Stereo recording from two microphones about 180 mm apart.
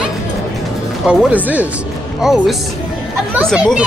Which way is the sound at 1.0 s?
5° right (ahead or behind).